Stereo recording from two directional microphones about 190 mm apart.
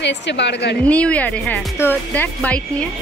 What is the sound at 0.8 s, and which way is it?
Speech, 5° left (ahead or behind).